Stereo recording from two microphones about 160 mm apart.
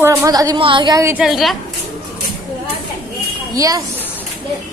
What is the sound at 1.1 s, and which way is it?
Speech, 5° right (ahead or behind).